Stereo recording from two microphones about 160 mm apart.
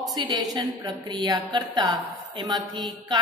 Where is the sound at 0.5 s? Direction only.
25° right (ahead or behind).